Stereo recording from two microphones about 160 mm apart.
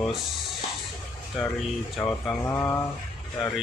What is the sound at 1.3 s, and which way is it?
Speech, centre (ahead or behind).